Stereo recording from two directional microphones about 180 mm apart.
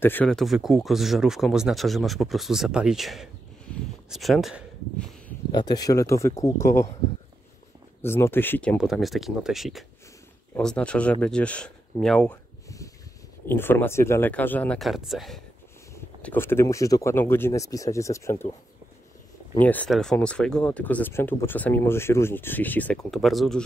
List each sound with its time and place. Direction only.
0.0 s speech: 10° left (ahead or behind)
5.5 s speech: 25° left (ahead or behind)
8.0 s speech: 15° left (ahead or behind)
8.7 s speech: centre (ahead or behind)
12.6 s a sound: 15° left (ahead or behind)
13.5 s speech: 10° left (ahead or behind)
15.9 s speech: 10° left (ahead or behind)
19.6 s speech: 10° left (ahead or behind)